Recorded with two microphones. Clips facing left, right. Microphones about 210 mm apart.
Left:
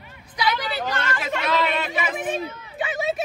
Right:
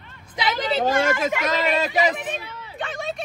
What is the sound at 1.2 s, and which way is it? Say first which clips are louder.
Speech: right 1 dB; 45° right (ahead or behind).